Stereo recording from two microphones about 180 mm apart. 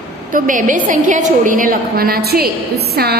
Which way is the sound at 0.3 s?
45° right (ahead or behind).